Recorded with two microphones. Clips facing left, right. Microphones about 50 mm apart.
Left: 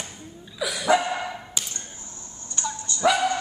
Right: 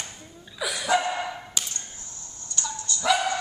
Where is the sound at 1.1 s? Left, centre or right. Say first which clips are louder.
Even; centre.